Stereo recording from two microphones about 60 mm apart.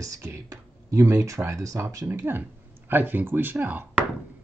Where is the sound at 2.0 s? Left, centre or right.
Right.